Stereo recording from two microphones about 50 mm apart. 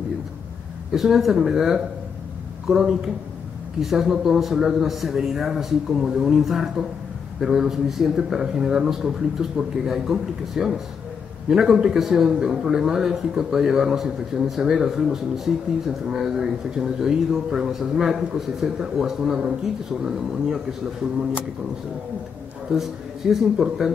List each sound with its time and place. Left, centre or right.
0.9 s a man's voice: centre
22.7 s a man's voice: centre